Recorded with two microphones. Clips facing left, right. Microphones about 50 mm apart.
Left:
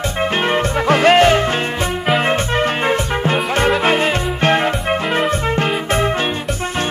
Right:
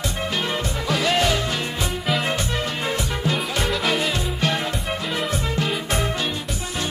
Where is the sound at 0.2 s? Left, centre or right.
Left.